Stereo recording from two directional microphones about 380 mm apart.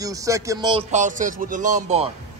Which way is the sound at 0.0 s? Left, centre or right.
Centre.